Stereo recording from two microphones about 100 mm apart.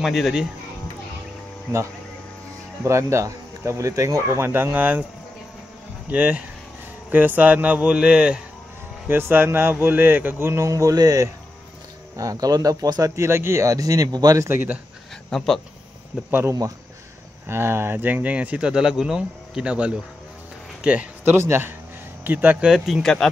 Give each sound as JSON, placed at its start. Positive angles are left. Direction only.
{"t": 0.0, "sound": "speech", "side_deg": 0}
{"t": 2.8, "sound": "speech", "side_deg": -30}
{"t": 6.0, "sound": "speech", "side_deg": -15}
{"t": 9.0, "sound": "a man's voice", "side_deg": -20}
{"t": 14.5, "sound": "speech", "side_deg": -20}
{"t": 15.2, "sound": "speech", "side_deg": 5}
{"t": 16.3, "sound": "speech", "side_deg": -20}
{"t": 22.7, "sound": "speech", "side_deg": -5}
{"t": 23.0, "sound": "speech", "side_deg": 5}